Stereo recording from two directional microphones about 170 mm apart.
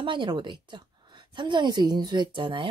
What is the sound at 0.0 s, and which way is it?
Speech, 30° right (ahead or behind).